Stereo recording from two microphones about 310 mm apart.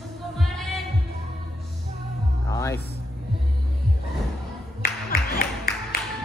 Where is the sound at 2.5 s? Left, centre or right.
Centre.